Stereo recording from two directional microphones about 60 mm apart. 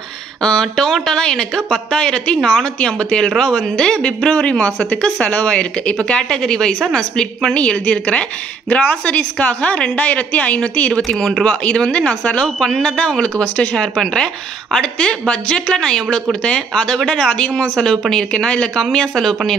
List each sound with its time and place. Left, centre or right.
0.4 s a woman's voice: centre
11.1 s a woman's voice: centre